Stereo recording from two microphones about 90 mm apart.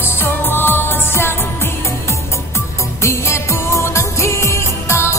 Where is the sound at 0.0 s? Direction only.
25° left (ahead or behind).